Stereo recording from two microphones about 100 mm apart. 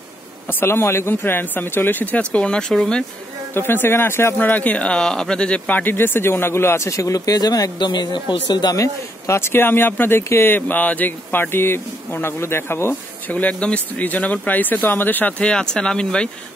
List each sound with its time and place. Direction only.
0.5 s speech: 20° left (ahead or behind); by 3.1 s 5° left (ahead or behind)
3.5 s speech: 20° left (ahead or behind)